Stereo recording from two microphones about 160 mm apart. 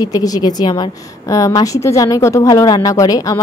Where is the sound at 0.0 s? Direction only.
25° left (ahead or behind).